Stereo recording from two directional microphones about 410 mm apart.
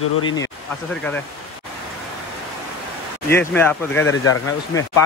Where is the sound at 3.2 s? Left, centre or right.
Centre.